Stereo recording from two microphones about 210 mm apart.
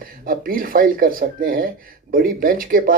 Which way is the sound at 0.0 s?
45° right (ahead or behind).